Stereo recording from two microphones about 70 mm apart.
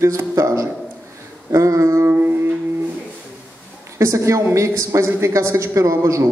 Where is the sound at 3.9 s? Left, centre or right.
Right.